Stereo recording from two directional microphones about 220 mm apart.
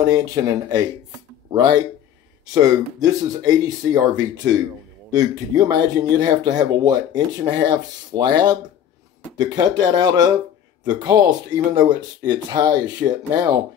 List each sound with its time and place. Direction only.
0.0 s speech: 15° right (ahead or behind)